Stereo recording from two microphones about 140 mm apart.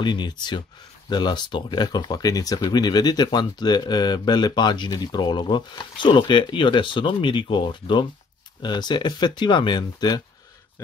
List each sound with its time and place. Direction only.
0.0 s speech: 30° left (ahead or behind)